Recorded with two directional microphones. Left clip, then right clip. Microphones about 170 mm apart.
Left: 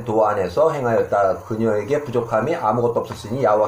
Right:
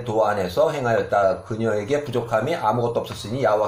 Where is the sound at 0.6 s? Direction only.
10° left (ahead or behind).